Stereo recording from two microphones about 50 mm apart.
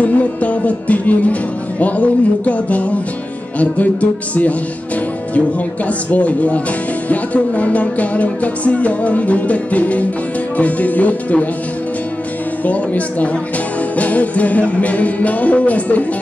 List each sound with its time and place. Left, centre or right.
0.0 s music: left
5.9 s music: left
12.6 s music: left